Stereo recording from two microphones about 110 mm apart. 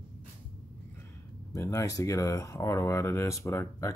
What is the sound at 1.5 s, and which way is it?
Speech, 30° left (ahead or behind).